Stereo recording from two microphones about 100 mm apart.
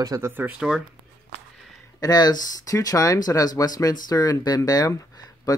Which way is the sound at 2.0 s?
40° left (ahead or behind).